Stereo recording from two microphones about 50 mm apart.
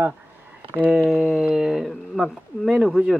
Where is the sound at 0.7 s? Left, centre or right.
Right.